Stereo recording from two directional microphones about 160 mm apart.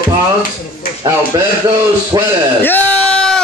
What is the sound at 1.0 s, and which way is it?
A man's voice, 25° right (ahead or behind).